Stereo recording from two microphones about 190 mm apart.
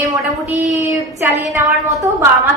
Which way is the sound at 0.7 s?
10° right (ahead or behind).